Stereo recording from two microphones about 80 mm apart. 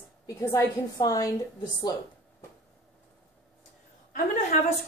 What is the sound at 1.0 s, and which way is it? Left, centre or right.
Speech, left.